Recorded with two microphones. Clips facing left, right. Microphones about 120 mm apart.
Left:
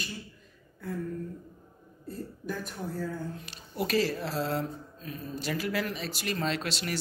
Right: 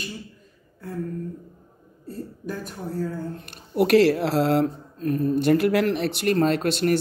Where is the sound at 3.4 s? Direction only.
65° right (ahead or behind).